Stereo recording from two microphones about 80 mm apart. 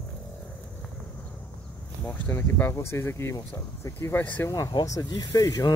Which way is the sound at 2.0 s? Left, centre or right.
Left.